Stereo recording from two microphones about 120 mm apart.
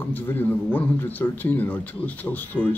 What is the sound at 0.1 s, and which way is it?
Speech, 15° left (ahead or behind).